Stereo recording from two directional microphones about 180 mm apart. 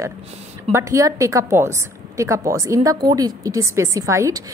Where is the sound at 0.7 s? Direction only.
15° right (ahead or behind).